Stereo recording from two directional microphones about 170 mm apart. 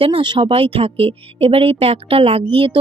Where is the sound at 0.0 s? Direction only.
30° right (ahead or behind).